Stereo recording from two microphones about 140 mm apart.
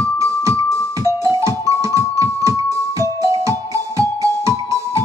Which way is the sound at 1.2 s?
20° right (ahead or behind).